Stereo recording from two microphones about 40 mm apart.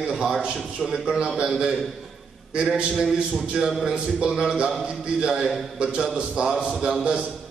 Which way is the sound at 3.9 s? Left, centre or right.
Right.